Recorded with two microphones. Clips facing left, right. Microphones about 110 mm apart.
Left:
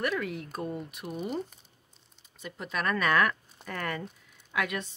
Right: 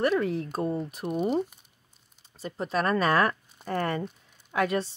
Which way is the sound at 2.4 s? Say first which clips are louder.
Right 5 dB; 35° right (ahead or behind).